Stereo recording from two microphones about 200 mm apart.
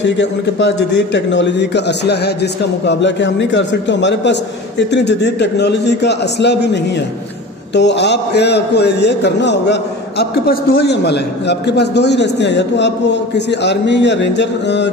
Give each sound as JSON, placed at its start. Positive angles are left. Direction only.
{"t": 0.0, "sound": "a man's voice", "side_deg": 60}